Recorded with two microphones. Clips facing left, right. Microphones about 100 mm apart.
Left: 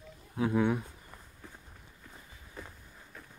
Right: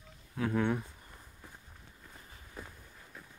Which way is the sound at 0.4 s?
10° left (ahead or behind).